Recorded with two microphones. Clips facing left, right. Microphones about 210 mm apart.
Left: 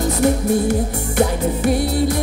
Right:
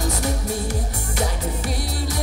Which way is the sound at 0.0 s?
55° left (ahead or behind).